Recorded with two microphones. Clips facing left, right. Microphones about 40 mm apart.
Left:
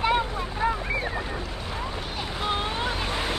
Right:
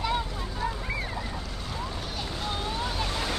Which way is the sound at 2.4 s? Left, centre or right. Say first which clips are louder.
Left 5 dB; left.